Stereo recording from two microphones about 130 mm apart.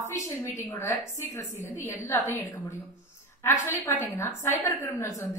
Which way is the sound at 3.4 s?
15° left (ahead or behind).